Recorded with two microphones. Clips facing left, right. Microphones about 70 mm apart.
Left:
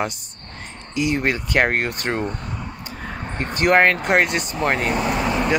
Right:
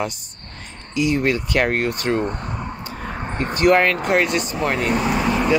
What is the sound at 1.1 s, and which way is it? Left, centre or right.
Speech, left.